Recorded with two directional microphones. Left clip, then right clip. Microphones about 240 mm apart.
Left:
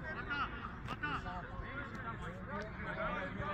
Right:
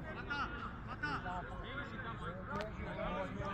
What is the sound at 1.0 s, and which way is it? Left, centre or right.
Vehicle, right.